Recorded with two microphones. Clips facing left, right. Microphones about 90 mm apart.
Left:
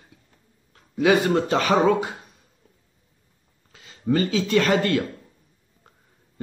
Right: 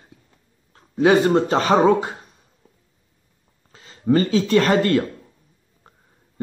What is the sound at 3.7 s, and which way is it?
Speech, 35° right (ahead or behind).